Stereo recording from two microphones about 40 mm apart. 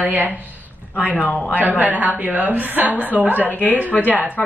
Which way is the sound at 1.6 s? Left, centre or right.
Right.